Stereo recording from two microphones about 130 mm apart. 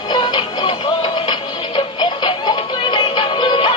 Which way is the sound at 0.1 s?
35° left (ahead or behind).